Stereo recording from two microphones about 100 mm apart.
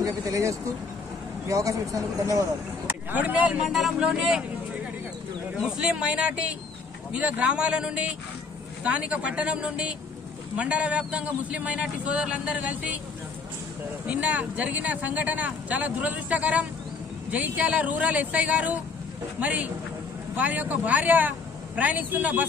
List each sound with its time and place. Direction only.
0.0 s speech: 35° right (ahead or behind)
2.9 s speech: 15° right (ahead or behind)
5.6 s speech: 5° right (ahead or behind)
14.0 s speech: 15° right (ahead or behind)